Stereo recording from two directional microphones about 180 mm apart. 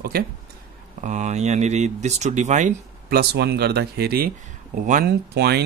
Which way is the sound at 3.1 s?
60° right (ahead or behind).